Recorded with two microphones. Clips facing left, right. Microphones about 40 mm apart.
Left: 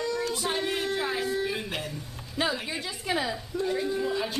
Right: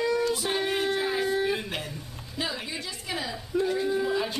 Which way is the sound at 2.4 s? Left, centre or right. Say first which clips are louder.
Left 3 dB; centre.